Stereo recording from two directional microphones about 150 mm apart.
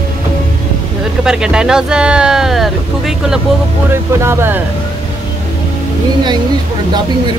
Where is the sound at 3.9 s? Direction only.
15° right (ahead or behind).